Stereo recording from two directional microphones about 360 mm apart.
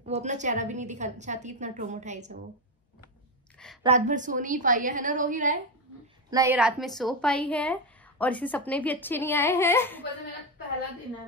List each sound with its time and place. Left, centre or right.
0.0 s a woman's voice: centre
3.5 s a sound: centre
3.8 s a woman's voice: centre
6.3 s a woman's voice: centre